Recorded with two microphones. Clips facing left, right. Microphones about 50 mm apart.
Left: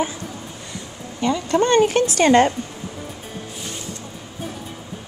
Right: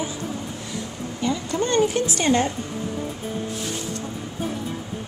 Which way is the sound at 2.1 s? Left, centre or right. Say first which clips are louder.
Left 8 dB; left.